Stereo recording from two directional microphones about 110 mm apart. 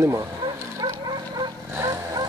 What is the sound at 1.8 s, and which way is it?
Vehicle, 35° right (ahead or behind).